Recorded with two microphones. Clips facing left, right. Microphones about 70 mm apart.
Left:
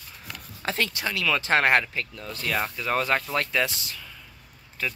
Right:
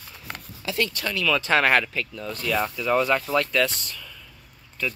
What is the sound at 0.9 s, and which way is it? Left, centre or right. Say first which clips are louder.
Speech: right 2 dB; centre.